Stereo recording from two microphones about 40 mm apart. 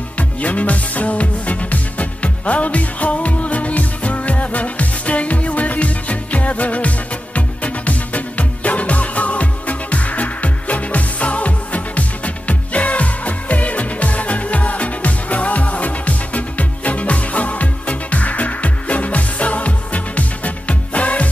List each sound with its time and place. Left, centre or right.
0.2 s music: left